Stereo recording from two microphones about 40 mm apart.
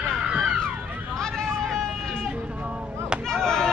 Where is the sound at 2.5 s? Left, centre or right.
Right.